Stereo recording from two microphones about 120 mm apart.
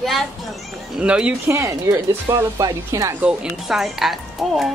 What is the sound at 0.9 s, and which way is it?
Speech, 10° right (ahead or behind).